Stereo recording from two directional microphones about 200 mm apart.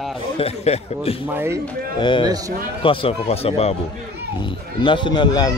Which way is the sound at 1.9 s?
25° left (ahead or behind).